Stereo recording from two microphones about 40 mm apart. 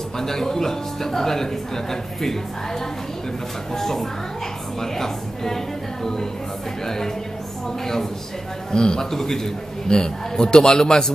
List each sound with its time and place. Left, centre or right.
0.2 s a man's voice: centre
3.7 s a man's voice: centre
7.8 s a man's voice: centre